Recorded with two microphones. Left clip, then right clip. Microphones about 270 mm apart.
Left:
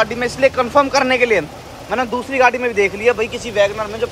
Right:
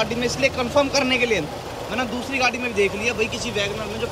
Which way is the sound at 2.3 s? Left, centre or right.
Left.